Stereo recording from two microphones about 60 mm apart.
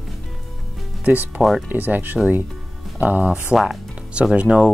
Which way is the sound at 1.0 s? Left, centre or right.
Right.